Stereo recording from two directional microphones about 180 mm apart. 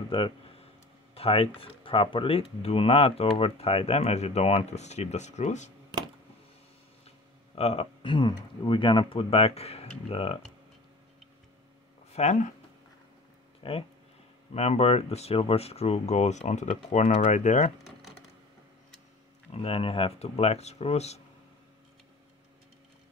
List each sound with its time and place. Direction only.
0.1 s speech: 30° left (ahead or behind)
7.1 s speech: 35° left (ahead or behind)
12.1 s speech: 40° left (ahead or behind)
13.6 s speech: 30° left (ahead or behind)
19.5 s speech: 30° left (ahead or behind)